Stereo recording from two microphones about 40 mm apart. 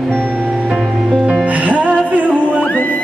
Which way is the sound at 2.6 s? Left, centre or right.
Left.